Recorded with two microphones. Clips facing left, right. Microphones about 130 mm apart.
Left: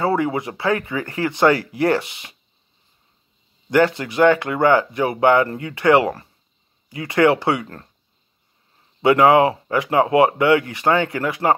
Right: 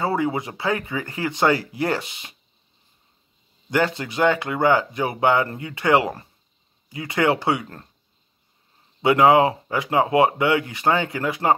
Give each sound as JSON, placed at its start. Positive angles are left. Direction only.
{"t": 0.0, "sound": "speech", "side_deg": -25}
{"t": 3.7, "sound": "speech", "side_deg": -20}
{"t": 9.0, "sound": "speech", "side_deg": -20}